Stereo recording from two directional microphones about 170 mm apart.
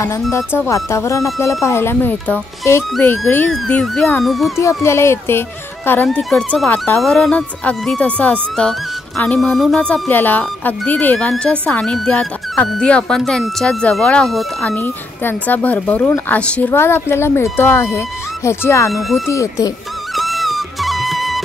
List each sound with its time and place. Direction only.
0.5 s speech: 15° left (ahead or behind); by 4.5 s centre (ahead or behind)
4.6 s speech: 15° left (ahead or behind)
18.9 s speech: centre (ahead or behind)
19.2 s speech: 20° left (ahead or behind)
20.2 s music: centre (ahead or behind)